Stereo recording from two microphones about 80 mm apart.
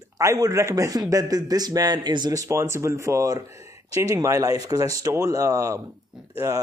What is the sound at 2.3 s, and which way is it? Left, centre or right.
A man's voice, right.